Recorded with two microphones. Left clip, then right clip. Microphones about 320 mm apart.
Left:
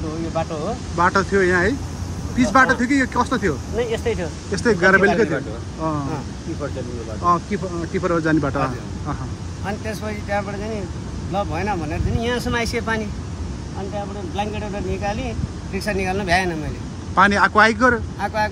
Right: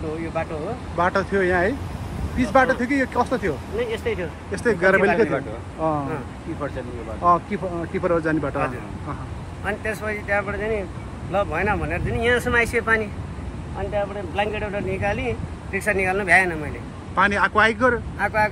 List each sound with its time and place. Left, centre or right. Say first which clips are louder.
0.9 s speech: left 3 dB; centre
3.7 s speech: left 2 dB; left
4.5 s speech: left 3 dB; centre
7.2 s speech: even; centre
9.7 s speech: right 2 dB; centre
14.3 s speech: right 1 dB; centre